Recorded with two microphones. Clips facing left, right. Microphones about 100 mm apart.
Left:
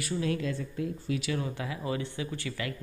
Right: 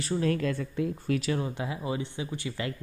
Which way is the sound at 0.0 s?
40° right (ahead or behind).